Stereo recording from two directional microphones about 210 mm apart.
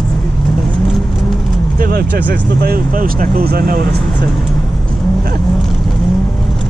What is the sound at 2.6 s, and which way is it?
Speech, 45° right (ahead or behind).